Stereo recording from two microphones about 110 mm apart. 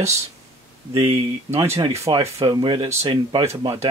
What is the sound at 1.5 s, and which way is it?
Speech, 25° right (ahead or behind).